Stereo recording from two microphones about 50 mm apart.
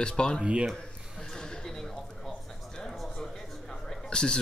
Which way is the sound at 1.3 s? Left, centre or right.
Centre.